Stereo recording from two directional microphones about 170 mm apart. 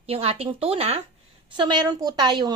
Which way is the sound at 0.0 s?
35° right (ahead or behind).